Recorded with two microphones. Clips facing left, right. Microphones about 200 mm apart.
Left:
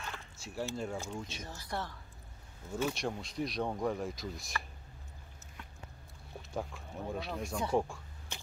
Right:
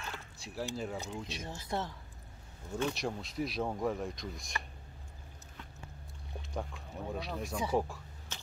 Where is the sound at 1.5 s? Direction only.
20° right (ahead or behind).